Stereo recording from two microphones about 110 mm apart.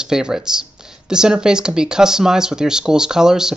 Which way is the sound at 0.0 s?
5° right (ahead or behind).